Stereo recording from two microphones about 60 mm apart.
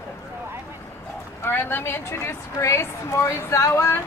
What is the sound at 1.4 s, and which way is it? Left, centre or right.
A woman's voice, left.